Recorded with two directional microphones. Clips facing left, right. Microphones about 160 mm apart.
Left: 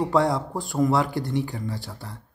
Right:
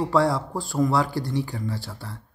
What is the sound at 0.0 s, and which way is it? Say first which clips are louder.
Speech: even; 20° left (ahead or behind).